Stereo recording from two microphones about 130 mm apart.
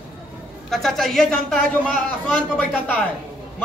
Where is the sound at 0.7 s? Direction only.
5° left (ahead or behind).